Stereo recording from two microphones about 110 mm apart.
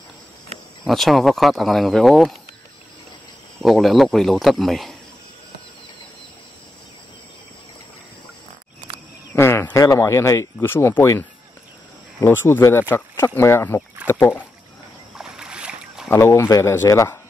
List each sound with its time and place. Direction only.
0.8 s speech: centre (ahead or behind)
3.6 s speech: centre (ahead or behind)
9.3 s a sound: 20° left (ahead or behind)
9.7 s speech: 30° left (ahead or behind)
15.1 s boat: 5° right (ahead or behind)
16.1 s speech: 20° left (ahead or behind)
16.4 s speech: 30° left (ahead or behind)